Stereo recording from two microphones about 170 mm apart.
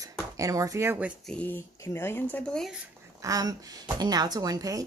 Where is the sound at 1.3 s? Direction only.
10° left (ahead or behind).